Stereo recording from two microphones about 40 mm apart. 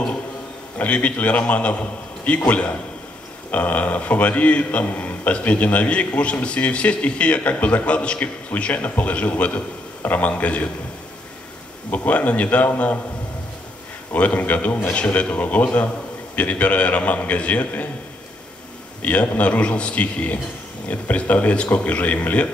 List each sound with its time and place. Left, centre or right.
0.7 s a man's voice: left
4.8 s a man's voice: left
8.8 s a man's voice: left
12.1 s a man's voice: left
14.1 s a man's voice: left
15.0 s a man's voice: left
19.0 s a man's voice: left